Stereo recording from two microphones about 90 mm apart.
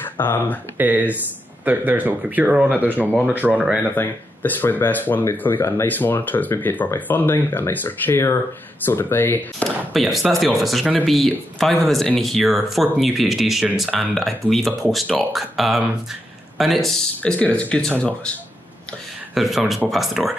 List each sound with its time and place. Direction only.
0.0 s speech: 25° left (ahead or behind)
0.7 s speech: 20° right (ahead or behind)
3.9 s speech: 20° left (ahead or behind)
9.9 s speech: centre (ahead or behind)
17.2 s speech: 15° left (ahead or behind)
19.3 s speech: centre (ahead or behind)